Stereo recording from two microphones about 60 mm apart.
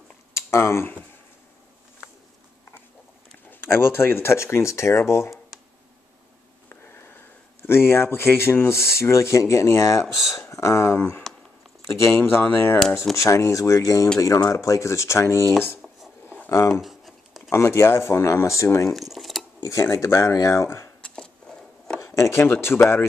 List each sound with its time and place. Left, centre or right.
0.3 s a sound: left
3.6 s speech: left
6.7 s speech: left
10.1 s speech: centre
10.5 s speech: left
12.2 s speech: left
12.7 s speech: centre
13.1 s speech: left
16.8 s a sound: centre
17.5 s speech: left
18.9 s a sound: centre
19.6 s speech: left
22.0 s a sound: left
22.3 s speech: left